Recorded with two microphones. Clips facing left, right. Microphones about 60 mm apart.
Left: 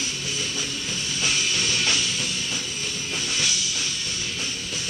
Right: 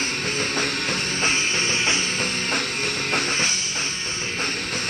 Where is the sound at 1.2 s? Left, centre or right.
Right.